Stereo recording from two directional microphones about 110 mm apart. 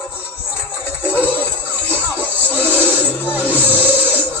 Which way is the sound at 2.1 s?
15° right (ahead or behind).